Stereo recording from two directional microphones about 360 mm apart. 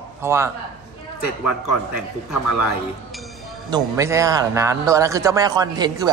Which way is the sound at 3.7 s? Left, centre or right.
Centre.